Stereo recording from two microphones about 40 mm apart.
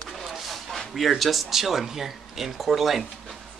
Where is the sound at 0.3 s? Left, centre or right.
Centre.